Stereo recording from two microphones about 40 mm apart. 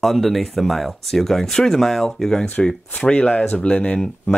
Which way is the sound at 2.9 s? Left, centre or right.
Left.